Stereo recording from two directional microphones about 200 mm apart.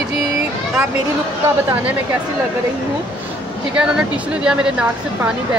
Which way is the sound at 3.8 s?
5° right (ahead or behind).